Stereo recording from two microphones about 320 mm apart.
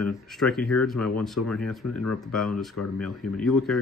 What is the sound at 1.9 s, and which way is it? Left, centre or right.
Speech, left.